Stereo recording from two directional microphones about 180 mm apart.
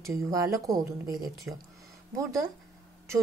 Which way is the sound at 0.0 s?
20° right (ahead or behind).